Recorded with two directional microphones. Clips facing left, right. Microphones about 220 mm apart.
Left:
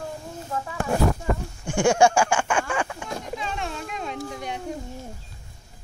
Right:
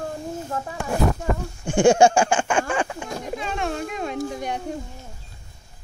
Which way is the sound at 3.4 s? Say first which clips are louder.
Right 5 dB; 55° right (ahead or behind).